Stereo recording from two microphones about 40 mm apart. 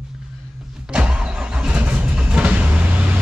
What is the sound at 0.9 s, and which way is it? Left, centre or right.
Vehicle, right.